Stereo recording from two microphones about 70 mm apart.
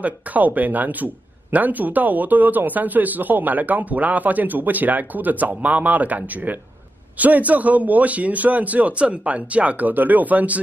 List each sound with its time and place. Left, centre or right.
0.0 s speech: right